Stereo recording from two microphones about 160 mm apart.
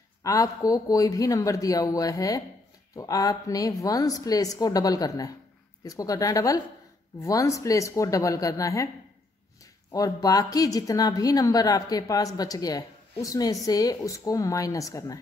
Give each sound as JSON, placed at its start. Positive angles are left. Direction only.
{"t": 0.2, "sound": "a woman's voice", "side_deg": 20}
{"t": 9.9, "sound": "a woman's voice", "side_deg": 20}